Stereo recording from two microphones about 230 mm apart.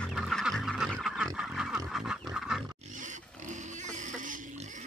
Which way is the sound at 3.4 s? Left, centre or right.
Right.